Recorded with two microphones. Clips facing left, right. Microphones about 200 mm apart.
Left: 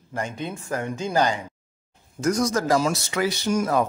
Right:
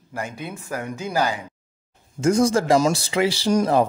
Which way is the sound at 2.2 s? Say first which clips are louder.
Right 4 dB; 25° right (ahead or behind).